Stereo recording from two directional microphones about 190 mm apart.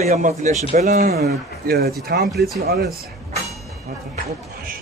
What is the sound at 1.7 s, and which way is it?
Speech, 55° right (ahead or behind).